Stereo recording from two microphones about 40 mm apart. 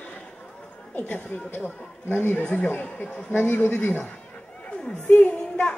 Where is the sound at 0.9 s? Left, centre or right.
Left.